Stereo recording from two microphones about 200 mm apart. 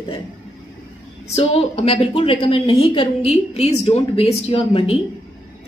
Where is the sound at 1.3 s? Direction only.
30° left (ahead or behind).